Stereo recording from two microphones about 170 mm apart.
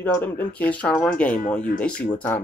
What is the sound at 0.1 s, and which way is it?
Speech, 10° left (ahead or behind).